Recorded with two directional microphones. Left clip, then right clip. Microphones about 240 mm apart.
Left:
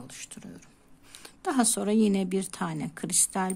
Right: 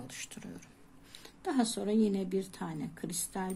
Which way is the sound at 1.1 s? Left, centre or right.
Left.